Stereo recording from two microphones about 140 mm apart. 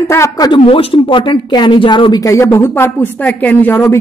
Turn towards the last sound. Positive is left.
turn(degrees=15)  # may be behind; listen again after turning